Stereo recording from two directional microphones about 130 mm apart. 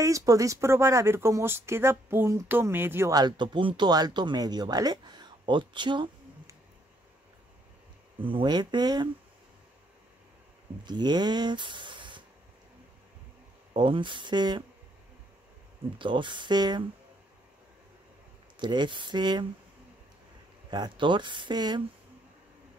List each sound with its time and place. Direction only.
0.0 s speech: 25° right (ahead or behind)
3.1 s speech: 35° right (ahead or behind)
8.2 s speech: 40° right (ahead or behind)
10.9 s speech: 35° right (ahead or behind)
13.7 s speech: 40° right (ahead or behind)
16.0 s speech: 40° right (ahead or behind)
18.6 s speech: 35° right (ahead or behind)
20.7 s speech: 35° right (ahead or behind)